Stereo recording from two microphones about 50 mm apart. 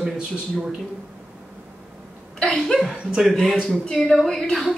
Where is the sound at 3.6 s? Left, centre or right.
Centre.